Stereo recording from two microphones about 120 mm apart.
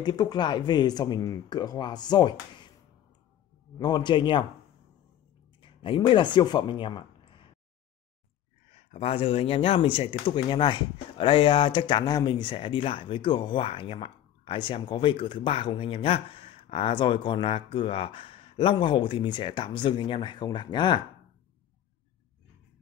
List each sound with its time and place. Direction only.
0.0 s speech: 35° left (ahead or behind)
3.7 s speech: 35° left (ahead or behind)
5.6 s speech: 45° left (ahead or behind)
8.7 s speech: 60° left (ahead or behind); by 21.0 s 40° left (ahead or behind)